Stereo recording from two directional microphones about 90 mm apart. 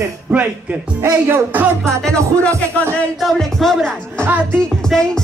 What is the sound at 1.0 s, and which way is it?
Music, 30° right (ahead or behind).